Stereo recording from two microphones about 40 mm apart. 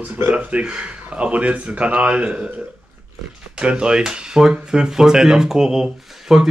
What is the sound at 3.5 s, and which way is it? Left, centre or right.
Speech, right.